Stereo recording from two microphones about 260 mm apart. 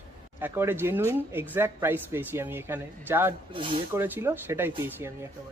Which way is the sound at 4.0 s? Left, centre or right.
Centre.